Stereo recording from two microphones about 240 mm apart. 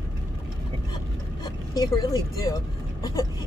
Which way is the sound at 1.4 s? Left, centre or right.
Centre.